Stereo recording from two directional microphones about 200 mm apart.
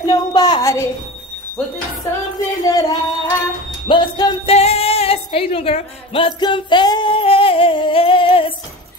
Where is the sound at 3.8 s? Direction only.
25° left (ahead or behind).